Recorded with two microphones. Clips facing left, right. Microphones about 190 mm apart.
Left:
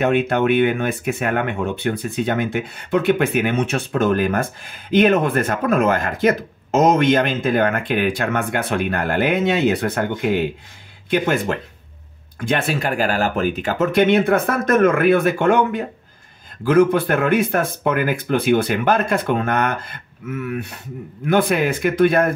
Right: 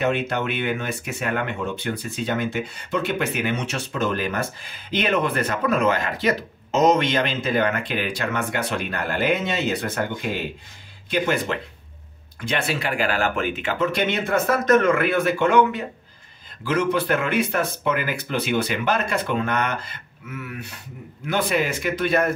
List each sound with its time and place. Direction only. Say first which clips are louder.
0.0 s speech: left 6 dB; 55° left (ahead or behind)
21.3 s speech: left 5 dB; 55° left (ahead or behind)